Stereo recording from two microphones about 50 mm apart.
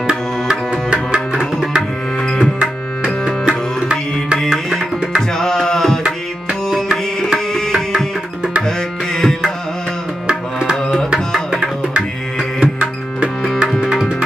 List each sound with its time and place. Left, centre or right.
0.1 s tabla: centre
3.4 s tabla: centre
5.4 s music: centre
7.3 s tabla: centre
10.2 s tabla: centre
12.7 s music: right